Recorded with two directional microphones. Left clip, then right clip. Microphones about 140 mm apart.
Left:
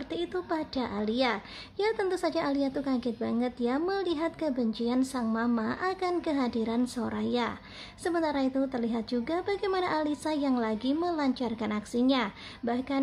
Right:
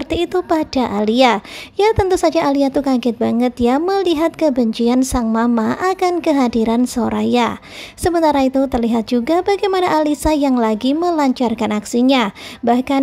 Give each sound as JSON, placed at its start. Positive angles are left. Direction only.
{"t": 0.1, "sound": "a woman's voice", "side_deg": -50}